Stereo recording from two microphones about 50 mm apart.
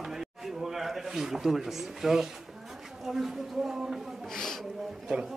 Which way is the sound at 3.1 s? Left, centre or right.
Centre.